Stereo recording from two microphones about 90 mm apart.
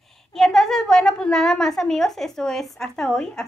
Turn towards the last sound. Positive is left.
turn(degrees=5)  # may be behind; listen again after turning